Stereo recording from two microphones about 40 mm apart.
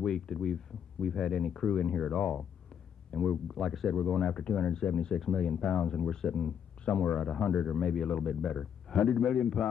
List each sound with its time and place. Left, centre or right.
0.1 s speech: centre
4.4 s speech: left
6.8 s speech: left
7.1 s speech: centre
7.3 s speech: centre